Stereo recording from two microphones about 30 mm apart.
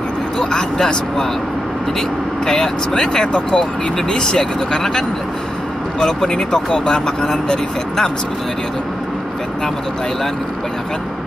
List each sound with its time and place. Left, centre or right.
0.4 s speech: left
6.5 s speech: left